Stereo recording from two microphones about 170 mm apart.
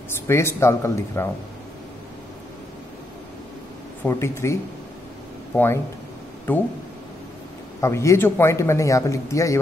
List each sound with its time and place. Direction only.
0.3 s speech: 15° left (ahead or behind)
4.0 s speech: 15° left (ahead or behind)
7.8 s speech: 15° left (ahead or behind)